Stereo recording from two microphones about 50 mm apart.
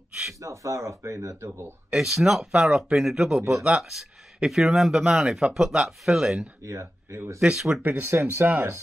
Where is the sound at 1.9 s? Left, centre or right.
Centre.